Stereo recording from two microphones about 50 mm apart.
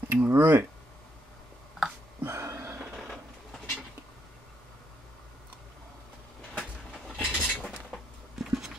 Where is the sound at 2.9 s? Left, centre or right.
Centre.